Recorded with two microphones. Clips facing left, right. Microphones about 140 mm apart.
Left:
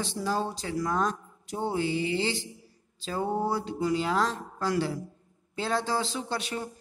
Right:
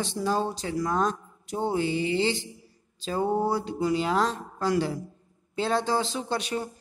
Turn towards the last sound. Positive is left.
turn(degrees=-20)  # may be behind; listen again after turning